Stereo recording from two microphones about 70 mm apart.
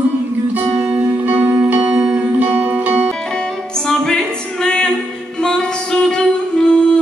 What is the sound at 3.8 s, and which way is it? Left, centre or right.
Music, centre.